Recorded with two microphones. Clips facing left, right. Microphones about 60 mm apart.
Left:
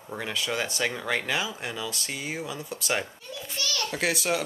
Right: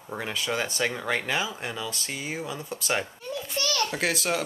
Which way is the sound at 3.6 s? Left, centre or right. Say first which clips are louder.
Right 4 dB; right.